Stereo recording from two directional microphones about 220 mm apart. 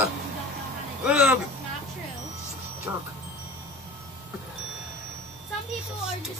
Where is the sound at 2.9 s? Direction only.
10° right (ahead or behind).